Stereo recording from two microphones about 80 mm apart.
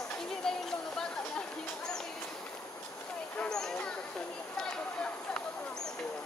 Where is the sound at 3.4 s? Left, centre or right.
Centre.